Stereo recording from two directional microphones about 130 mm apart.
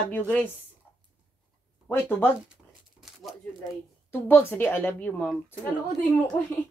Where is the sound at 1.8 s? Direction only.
15° left (ahead or behind).